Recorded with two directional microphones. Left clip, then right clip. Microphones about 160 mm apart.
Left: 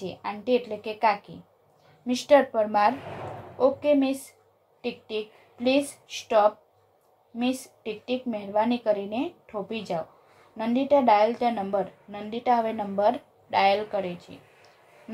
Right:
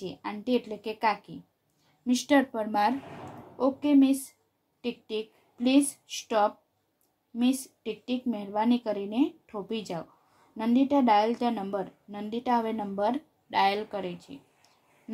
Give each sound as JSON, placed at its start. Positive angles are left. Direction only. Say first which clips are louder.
{"t": 0.0, "sound": "a woman's voice", "louder": "left 4 dB", "side_deg": -50}